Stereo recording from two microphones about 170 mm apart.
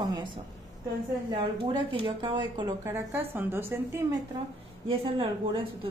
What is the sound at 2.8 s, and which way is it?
Speech, 15° right (ahead or behind).